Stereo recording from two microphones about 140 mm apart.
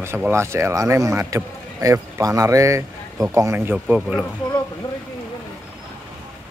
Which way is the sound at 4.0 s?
Centre (ahead or behind).